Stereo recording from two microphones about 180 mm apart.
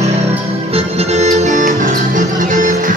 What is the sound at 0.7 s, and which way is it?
Music, 35° right (ahead or behind).